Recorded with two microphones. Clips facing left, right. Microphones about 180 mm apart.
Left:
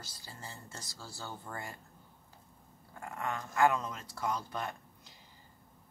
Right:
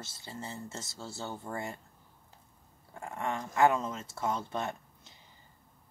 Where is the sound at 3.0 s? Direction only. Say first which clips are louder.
Right 3 dB; 25° right (ahead or behind).